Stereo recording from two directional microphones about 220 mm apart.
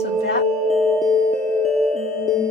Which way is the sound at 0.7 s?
Centre (ahead or behind).